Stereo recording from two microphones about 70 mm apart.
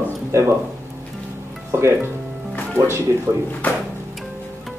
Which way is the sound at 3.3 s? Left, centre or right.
Right.